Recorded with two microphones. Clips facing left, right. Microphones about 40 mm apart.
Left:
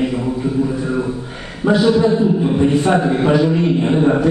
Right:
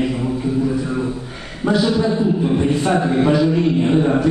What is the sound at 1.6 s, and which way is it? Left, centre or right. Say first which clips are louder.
A man's voice: left 4 dB; centre.